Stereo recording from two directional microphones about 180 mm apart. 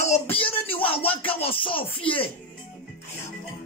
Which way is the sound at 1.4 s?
30° left (ahead or behind).